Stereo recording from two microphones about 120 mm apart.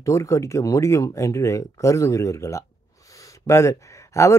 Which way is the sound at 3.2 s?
25° left (ahead or behind).